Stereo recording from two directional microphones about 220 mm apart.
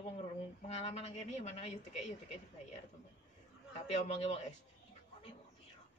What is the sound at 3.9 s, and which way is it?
Speech, 25° left (ahead or behind).